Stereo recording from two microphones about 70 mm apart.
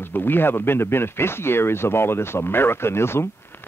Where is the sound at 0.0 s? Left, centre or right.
Left.